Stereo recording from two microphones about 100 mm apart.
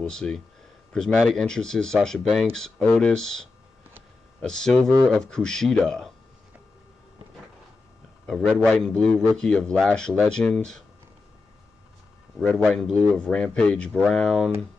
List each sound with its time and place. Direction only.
0.0 s a man's voice: 5° left (ahead or behind)
8.3 s a man's voice: 5° left (ahead or behind)
12.6 s speech: 5° left (ahead or behind)